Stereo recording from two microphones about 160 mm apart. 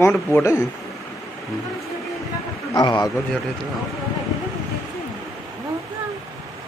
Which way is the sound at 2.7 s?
25° left (ahead or behind).